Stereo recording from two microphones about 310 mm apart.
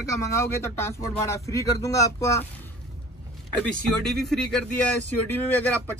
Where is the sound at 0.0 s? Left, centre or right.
Centre.